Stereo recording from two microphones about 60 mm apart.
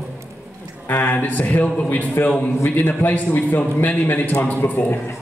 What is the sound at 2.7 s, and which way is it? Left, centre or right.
A man's voice, left.